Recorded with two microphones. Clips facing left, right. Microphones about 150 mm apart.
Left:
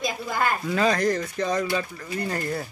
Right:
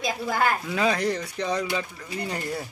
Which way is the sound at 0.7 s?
10° right (ahead or behind).